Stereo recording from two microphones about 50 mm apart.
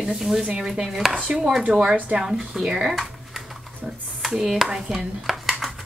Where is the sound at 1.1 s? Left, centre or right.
Centre.